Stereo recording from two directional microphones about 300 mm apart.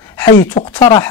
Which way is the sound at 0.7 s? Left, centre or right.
Centre.